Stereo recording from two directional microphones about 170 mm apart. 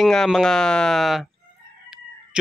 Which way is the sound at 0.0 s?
Centre (ahead or behind).